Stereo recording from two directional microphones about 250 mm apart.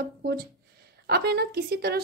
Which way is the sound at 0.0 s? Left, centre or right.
Right.